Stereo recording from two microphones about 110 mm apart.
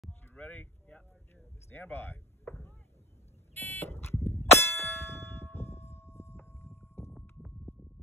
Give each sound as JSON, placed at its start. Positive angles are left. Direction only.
{"t": 0.3, "sound": "a sound", "side_deg": 20}
{"t": 1.7, "sound": "chop", "side_deg": 20}
{"t": 3.5, "sound": "buzzer", "side_deg": 20}
{"t": 4.4, "sound": "clang", "side_deg": 25}
{"t": 7.1, "sound": "horse", "side_deg": -5}